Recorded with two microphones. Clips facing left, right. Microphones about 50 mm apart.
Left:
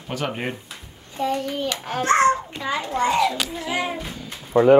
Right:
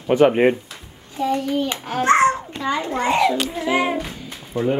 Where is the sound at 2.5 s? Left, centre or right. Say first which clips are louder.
Right 3 dB; centre.